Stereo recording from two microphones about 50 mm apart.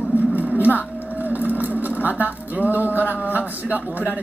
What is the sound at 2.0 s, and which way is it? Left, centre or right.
Speech, right.